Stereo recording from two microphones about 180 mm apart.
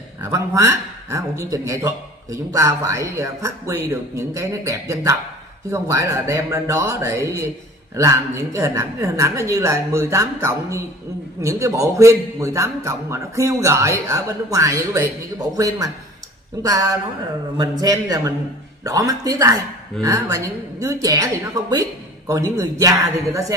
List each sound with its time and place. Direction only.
0.2 s a man's voice: 15° right (ahead or behind)
17.6 s a woman's voice: 20° right (ahead or behind)